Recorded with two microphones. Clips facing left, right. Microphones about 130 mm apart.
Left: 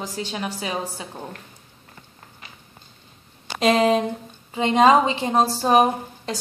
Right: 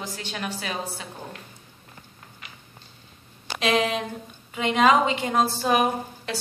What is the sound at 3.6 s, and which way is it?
A woman's voice, 40° left (ahead or behind).